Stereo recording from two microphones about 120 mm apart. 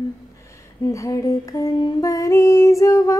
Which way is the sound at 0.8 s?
25° left (ahead or behind).